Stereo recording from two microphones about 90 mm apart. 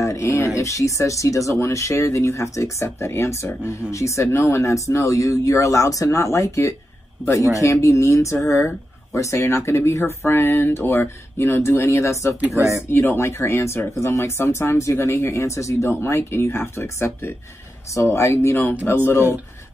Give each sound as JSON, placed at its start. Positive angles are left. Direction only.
{"t": 0.0, "sound": "speech", "side_deg": 35}
{"t": 12.5, "sound": "speech", "side_deg": -30}
{"t": 12.9, "sound": "speech", "side_deg": 25}